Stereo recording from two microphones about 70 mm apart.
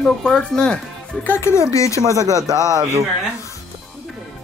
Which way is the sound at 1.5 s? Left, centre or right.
Left.